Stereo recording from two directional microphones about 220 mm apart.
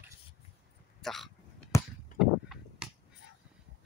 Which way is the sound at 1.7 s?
15° left (ahead or behind).